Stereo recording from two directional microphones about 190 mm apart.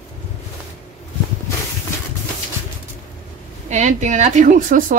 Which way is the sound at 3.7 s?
40° right (ahead or behind).